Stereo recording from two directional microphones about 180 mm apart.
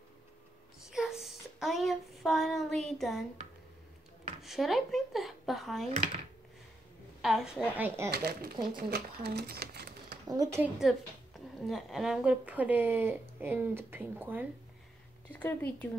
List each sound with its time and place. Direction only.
0.8 s a sound: 5° right (ahead or behind)
4.4 s speech: centre (ahead or behind)
7.2 s a woman's voice: centre (ahead or behind)
8.1 s speech: 60° right (ahead or behind)
8.6 s a sound: 60° right (ahead or behind)
10.2 s a woman's voice: 20° right (ahead or behind)
10.6 s a woman's voice: centre (ahead or behind)
15.3 s speech: 10° left (ahead or behind)